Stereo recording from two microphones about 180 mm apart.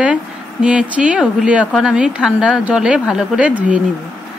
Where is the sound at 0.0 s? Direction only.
5° right (ahead or behind).